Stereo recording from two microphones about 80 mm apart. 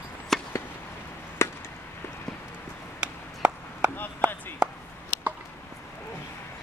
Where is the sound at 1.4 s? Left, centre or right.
Left.